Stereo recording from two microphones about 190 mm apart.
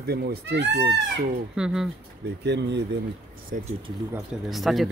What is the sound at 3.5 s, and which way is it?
Speech, 50° right (ahead or behind).